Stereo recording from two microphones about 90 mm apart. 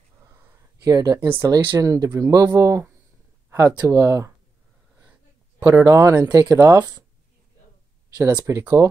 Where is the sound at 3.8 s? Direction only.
30° right (ahead or behind).